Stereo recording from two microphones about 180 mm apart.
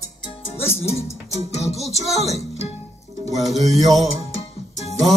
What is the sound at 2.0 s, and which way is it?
Music, 35° left (ahead or behind).